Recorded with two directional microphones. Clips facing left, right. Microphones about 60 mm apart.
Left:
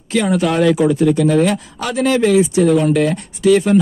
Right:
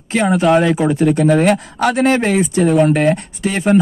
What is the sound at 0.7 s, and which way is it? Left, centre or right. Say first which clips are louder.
Speech: left 1 dB; right.